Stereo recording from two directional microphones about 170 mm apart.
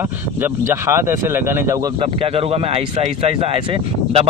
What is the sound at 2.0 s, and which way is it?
A man's voice, 35° right (ahead or behind).